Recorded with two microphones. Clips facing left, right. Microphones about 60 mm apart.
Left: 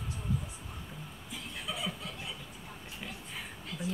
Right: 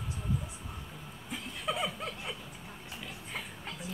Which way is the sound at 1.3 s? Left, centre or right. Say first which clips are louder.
Right 5 dB; right.